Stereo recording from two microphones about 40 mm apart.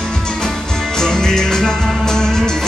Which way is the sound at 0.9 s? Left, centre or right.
Centre.